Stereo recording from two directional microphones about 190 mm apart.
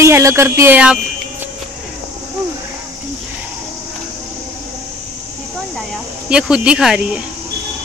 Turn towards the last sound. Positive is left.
turn(degrees=-5)  # may be behind; listen again after turning